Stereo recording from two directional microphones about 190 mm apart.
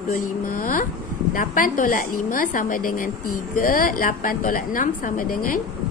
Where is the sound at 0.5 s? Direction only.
45° left (ahead or behind).